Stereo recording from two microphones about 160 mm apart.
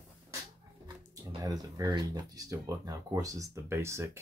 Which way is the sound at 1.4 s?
20° right (ahead or behind).